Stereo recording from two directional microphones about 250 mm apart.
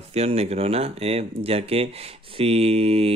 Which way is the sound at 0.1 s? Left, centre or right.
Right.